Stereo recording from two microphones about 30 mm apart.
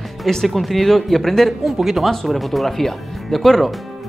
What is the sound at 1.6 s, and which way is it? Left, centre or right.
Speech, centre.